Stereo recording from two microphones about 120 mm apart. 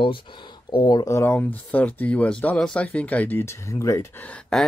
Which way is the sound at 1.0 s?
20° left (ahead or behind).